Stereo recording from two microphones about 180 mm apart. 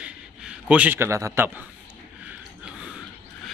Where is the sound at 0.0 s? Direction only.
5° right (ahead or behind).